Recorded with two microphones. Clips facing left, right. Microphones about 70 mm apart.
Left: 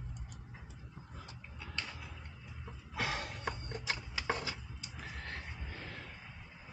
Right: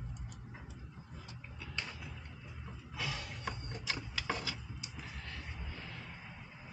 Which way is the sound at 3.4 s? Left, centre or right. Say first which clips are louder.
Right 1 dB; left.